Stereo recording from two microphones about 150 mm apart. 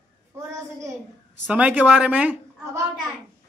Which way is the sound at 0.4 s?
20° right (ahead or behind).